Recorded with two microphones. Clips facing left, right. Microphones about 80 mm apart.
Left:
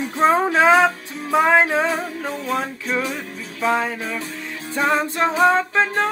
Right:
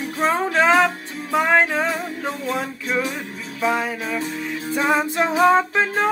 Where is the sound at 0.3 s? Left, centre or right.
Centre.